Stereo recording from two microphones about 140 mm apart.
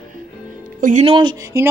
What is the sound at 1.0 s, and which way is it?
Speech, 35° right (ahead or behind).